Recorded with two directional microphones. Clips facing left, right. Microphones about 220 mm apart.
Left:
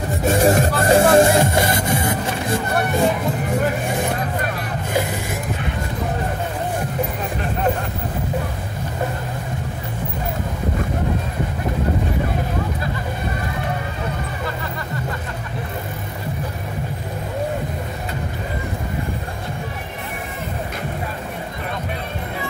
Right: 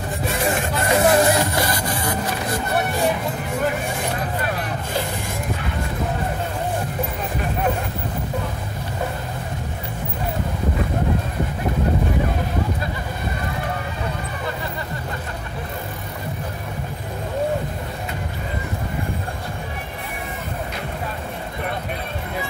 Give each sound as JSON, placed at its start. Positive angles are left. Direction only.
{"t": 0.2, "sound": "music", "side_deg": 45}